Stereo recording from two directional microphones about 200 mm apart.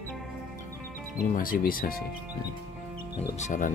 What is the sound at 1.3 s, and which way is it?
Speech, 45° left (ahead or behind).